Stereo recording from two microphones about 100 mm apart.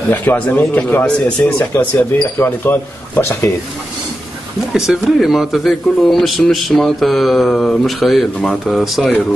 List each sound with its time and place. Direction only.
0.1 s speech: 15° left (ahead or behind)
4.7 s speech: 5° right (ahead or behind)